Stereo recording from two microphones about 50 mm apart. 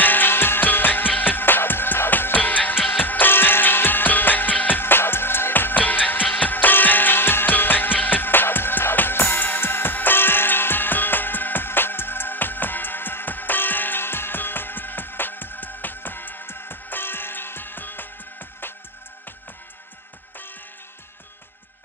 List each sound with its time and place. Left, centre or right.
0.0 s music: left